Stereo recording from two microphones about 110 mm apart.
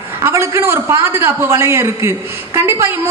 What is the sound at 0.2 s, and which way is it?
A man's voice, 25° right (ahead or behind).